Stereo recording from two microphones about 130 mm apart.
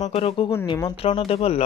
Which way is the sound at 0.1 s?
50° left (ahead or behind).